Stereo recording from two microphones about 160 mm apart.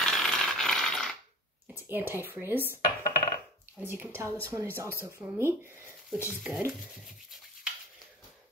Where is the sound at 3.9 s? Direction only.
15° right (ahead or behind).